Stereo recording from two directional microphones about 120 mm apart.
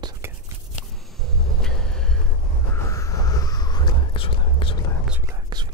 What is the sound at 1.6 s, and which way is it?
Vehicle, 5° left (ahead or behind).